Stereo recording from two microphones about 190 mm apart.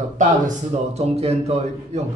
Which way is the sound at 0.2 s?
40° right (ahead or behind).